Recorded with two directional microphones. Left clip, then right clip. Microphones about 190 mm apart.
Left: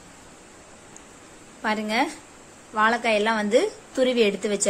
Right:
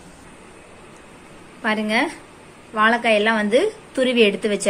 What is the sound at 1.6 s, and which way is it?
A woman's voice, 10° left (ahead or behind).